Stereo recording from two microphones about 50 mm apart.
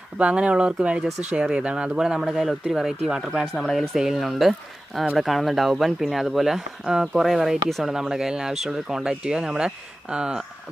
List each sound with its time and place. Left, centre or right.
0.2 s speech: right
2.0 s speech: centre
3.9 s speech: centre